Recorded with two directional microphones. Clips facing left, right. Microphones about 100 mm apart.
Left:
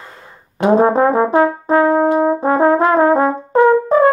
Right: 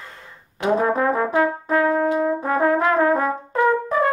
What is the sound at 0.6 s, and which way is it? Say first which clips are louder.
Brass instrument: left 7 dB; 30° left (ahead or behind).